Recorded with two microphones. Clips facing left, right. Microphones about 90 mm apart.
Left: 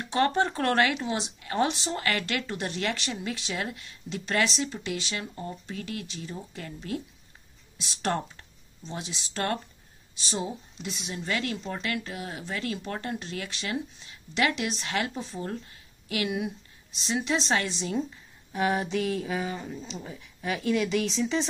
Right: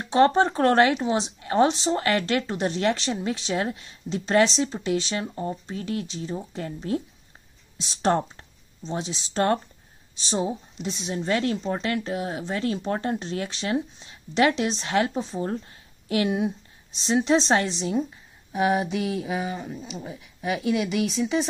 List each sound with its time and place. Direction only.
0.0 s speech: 25° right (ahead or behind); by 21.5 s 10° right (ahead or behind)